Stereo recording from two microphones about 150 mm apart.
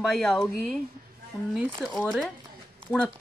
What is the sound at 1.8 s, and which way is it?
Speech, centre (ahead or behind).